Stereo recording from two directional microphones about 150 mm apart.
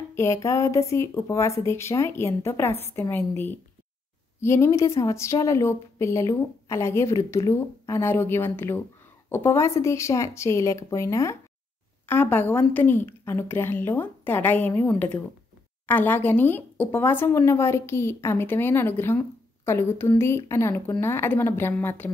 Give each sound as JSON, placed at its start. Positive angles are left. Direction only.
{"t": 0.1, "sound": "a woman's voice", "side_deg": 20}